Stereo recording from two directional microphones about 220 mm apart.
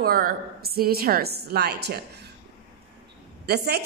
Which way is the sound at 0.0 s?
40° right (ahead or behind).